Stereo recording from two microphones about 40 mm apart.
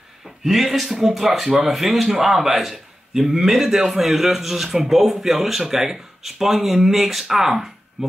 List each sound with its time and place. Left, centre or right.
0.4 s a man's voice: centre